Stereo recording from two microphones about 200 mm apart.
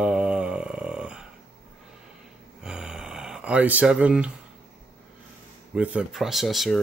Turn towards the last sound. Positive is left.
turn(degrees=0)  # may be behind; listen again after turning